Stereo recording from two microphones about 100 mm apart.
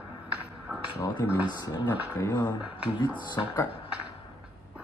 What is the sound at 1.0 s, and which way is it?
Speech, 25° left (ahead or behind).